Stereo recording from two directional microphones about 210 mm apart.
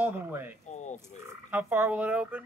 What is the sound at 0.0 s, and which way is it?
Speech, 10° right (ahead or behind).